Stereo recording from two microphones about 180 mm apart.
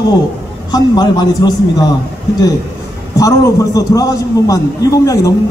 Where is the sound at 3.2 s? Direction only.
20° left (ahead or behind).